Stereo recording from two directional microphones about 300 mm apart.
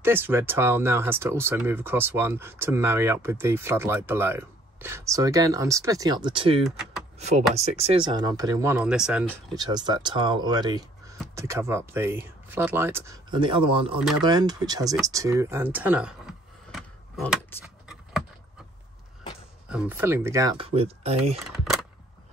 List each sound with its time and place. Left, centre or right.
0.0 s speech: centre
15.0 s a sound: centre
19.7 s speech: centre